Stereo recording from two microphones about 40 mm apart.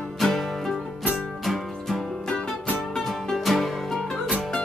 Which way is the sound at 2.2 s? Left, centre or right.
Centre.